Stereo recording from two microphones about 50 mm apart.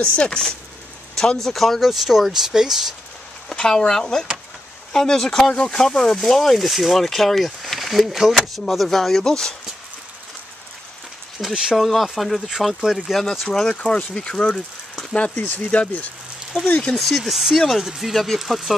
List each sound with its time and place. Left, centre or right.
0.0 s speech: left
1.1 s speech: centre
3.4 s speech: centre
11.4 s speech: centre
13.7 s speech: left
15.3 s speech: left
16.9 s speech: centre
17.2 s speech: centre